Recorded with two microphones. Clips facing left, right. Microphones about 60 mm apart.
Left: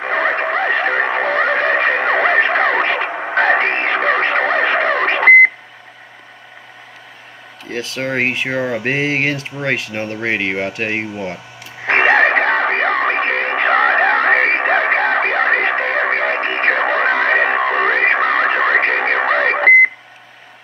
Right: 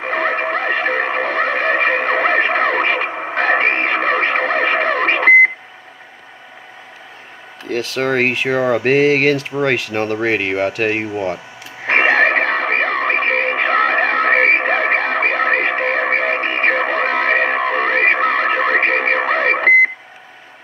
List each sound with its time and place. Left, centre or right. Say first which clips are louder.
0.0 s music: left 1 dB; centre
3.1 s radio: left 1 dB; centre
3.3 s radio: left 1 dB; centre
7.7 s speech: right 3 dB; right
11.8 s radio: left 1 dB; centre